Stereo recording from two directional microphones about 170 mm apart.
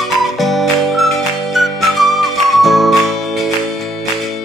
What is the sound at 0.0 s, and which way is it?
Music, centre (ahead or behind).